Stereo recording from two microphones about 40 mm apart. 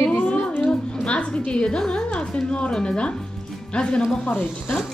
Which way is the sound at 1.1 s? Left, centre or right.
Left.